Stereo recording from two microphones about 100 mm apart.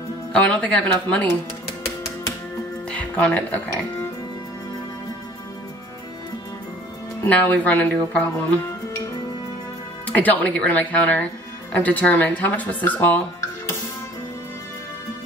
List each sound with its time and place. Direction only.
0.3 s speech: 15° left (ahead or behind)
2.9 s music: 15° left (ahead or behind)
7.2 s speech: 15° left (ahead or behind)
10.0 s speech: 15° left (ahead or behind)